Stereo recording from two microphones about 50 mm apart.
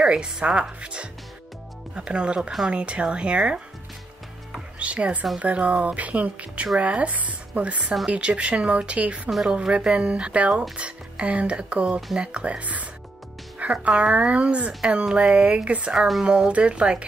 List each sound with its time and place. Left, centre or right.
0.0 s speech: centre
4.7 s speech: right